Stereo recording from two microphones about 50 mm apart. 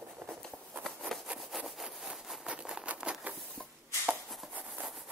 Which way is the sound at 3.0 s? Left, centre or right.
Centre.